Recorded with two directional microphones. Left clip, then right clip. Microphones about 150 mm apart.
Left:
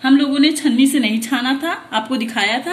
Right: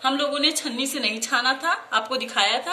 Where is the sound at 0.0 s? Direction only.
30° left (ahead or behind).